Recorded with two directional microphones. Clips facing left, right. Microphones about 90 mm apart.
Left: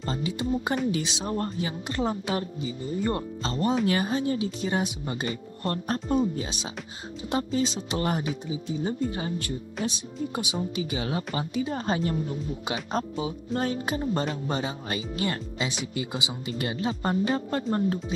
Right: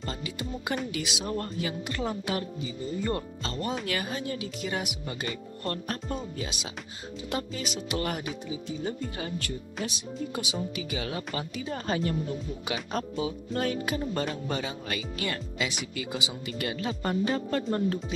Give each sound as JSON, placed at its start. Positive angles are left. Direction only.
{"t": 0.0, "sound": "speech", "side_deg": 30}